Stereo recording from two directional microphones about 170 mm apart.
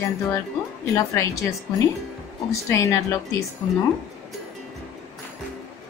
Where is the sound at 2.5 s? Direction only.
15° left (ahead or behind).